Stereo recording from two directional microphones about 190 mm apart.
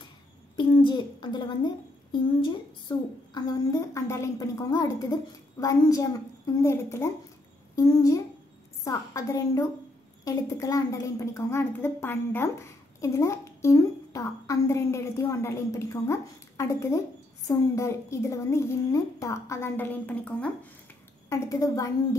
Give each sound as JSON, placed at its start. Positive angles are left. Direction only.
{"t": 0.6, "sound": "a child's voice", "side_deg": 25}
{"t": 3.3, "sound": "a woman's voice", "side_deg": 20}